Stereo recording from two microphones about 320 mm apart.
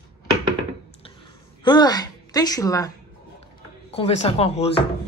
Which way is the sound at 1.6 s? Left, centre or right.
Centre.